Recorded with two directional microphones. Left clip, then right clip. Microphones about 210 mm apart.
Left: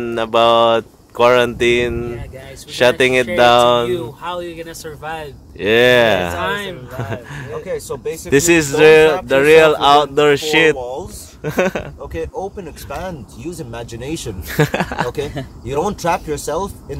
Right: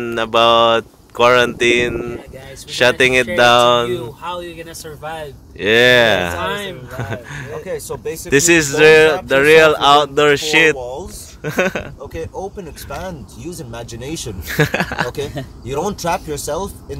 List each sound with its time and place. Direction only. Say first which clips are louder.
0.0 s speech: even; 5° left (ahead or behind)
7.5 s speech: left 2 dB; 50° right (ahead or behind)
8.3 s speech: even; 10° left (ahead or behind)